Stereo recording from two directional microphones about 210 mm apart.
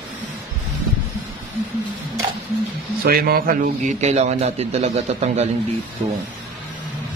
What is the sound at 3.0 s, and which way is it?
A man's voice, 45° right (ahead or behind).